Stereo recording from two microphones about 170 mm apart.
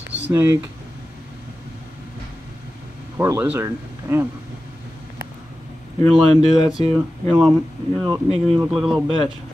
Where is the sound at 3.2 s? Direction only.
15° right (ahead or behind).